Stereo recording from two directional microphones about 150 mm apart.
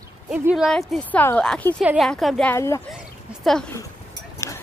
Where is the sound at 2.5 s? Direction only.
20° left (ahead or behind).